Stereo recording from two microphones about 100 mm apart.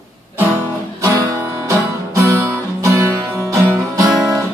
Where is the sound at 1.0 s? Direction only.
30° right (ahead or behind).